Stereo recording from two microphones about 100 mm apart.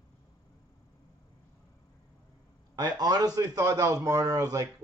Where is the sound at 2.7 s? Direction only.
45° right (ahead or behind).